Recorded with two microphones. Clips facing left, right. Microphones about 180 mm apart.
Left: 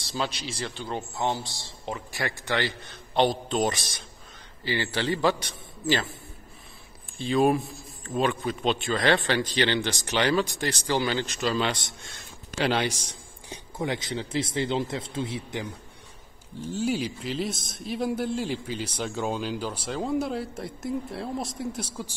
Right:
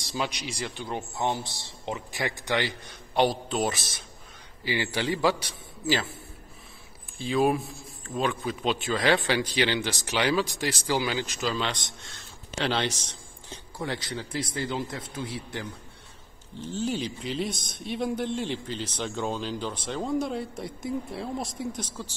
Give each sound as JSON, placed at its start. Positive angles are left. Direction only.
{"t": 0.0, "sound": "a man's voice", "side_deg": -15}
{"t": 7.2, "sound": "a man's voice", "side_deg": 0}
{"t": 16.6, "sound": "a man's voice", "side_deg": 10}